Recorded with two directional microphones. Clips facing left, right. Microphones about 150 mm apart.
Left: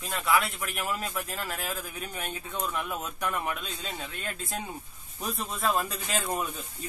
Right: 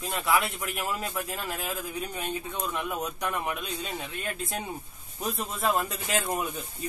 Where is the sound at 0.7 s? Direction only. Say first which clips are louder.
Even; 20° right (ahead or behind).